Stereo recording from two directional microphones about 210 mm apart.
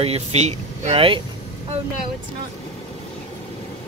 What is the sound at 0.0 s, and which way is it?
Speech, 30° right (ahead or behind).